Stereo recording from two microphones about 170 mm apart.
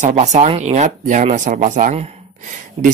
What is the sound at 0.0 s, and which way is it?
A man's voice, 40° right (ahead or behind).